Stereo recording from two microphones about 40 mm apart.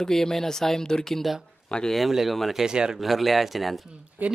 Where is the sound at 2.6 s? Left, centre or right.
Centre.